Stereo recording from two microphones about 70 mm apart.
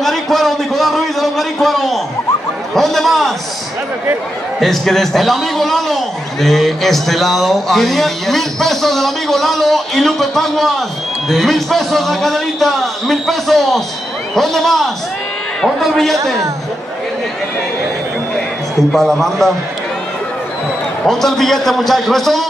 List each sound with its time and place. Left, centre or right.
0.0 s a sound: centre
2.7 s a man's voice: centre
4.6 s a man's voice: centre
18.9 s a man's voice: centre
21.0 s a man's voice: centre